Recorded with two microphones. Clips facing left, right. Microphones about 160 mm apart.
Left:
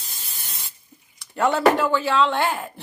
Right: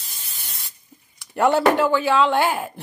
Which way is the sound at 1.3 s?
5° right (ahead or behind).